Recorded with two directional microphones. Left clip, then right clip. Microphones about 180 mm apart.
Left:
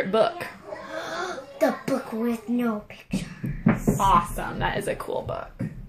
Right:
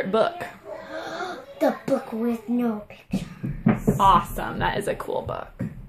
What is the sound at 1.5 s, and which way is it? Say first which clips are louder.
A child's voice: right 1 dB; 5° left (ahead or behind).